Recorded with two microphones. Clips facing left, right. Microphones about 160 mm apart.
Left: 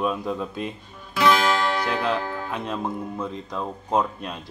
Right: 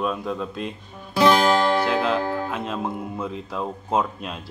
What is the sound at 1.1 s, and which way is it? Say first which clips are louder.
Music: right 3 dB; 35° right (ahead or behind).